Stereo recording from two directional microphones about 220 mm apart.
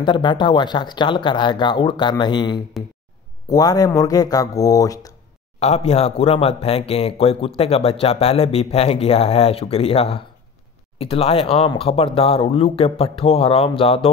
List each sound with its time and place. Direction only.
0.0 s speech: 20° left (ahead or behind)
5.6 s speech: 30° left (ahead or behind)